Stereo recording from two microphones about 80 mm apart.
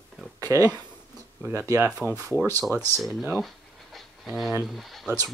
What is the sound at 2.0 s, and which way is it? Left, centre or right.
Speech, left.